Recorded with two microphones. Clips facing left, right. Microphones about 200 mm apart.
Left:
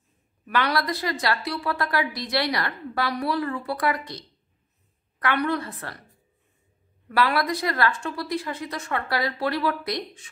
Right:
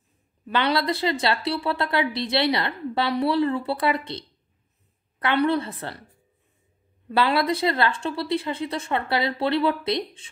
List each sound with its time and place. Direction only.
0.5 s a woman's voice: 25° right (ahead or behind)
5.2 s a woman's voice: 30° right (ahead or behind)
7.1 s a woman's voice: 25° right (ahead or behind)